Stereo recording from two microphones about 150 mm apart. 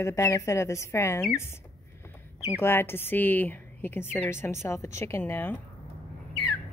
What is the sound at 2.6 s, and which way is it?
A woman's voice, 15° left (ahead or behind).